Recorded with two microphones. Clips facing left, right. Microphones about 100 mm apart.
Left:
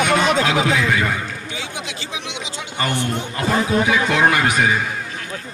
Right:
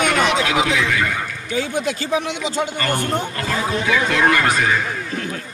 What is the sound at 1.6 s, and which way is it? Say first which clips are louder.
Speech: right 13 dB; 45° right (ahead or behind).